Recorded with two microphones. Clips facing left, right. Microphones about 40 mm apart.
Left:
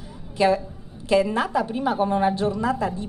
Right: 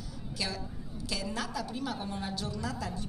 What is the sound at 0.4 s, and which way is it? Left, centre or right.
A woman's voice, left.